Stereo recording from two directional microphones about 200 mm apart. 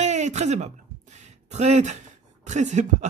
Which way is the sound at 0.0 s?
35° right (ahead or behind).